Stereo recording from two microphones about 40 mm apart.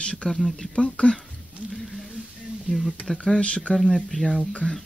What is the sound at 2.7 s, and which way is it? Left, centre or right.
Speech, centre.